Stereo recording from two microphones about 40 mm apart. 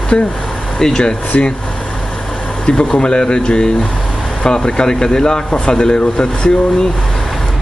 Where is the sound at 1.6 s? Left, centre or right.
Left.